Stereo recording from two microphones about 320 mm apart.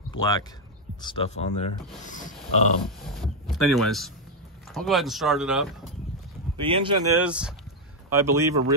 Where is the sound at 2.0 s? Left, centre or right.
Left.